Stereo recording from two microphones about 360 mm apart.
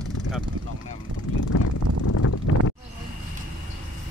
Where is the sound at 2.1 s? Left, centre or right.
Left.